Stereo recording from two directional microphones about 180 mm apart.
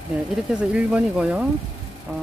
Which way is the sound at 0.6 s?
5° right (ahead or behind).